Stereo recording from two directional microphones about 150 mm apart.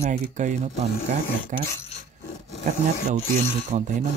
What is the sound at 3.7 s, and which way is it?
Speech, 50° right (ahead or behind).